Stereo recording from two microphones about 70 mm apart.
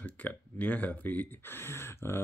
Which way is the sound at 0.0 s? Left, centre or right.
Left.